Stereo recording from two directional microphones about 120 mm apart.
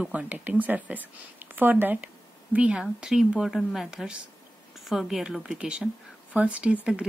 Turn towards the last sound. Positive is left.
turn(degrees=-10)  # may be behind; listen again after turning